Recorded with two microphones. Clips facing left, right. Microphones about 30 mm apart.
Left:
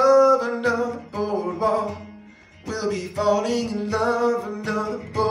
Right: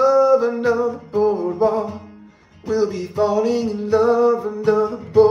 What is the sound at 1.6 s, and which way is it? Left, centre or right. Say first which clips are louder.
Music: right 3 dB; left.